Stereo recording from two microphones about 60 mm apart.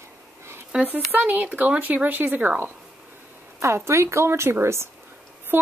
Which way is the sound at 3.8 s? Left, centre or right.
Right.